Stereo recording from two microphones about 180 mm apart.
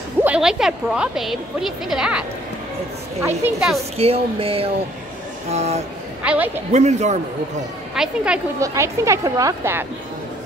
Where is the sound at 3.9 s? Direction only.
35° right (ahead or behind).